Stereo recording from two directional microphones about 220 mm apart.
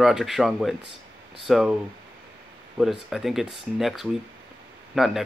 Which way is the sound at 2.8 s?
Centre (ahead or behind).